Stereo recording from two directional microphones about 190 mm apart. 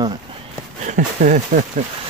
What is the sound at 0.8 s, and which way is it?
Speech, 45° right (ahead or behind).